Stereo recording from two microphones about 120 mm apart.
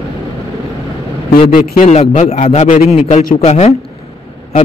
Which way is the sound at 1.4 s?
65° left (ahead or behind).